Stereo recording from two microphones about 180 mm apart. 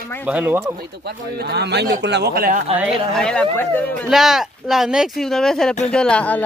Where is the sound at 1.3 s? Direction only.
65° right (ahead or behind).